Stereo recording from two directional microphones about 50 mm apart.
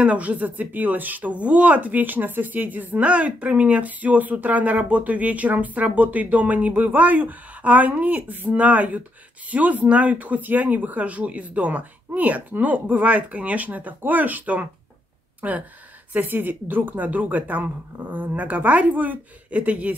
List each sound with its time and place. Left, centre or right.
0.0 s speech: right